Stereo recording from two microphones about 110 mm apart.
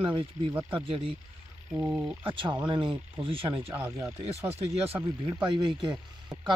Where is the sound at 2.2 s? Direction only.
50° right (ahead or behind).